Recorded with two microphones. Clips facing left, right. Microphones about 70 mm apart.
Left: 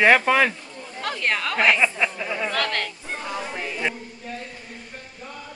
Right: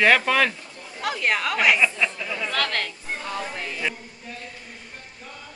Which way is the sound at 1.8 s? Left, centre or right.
Centre.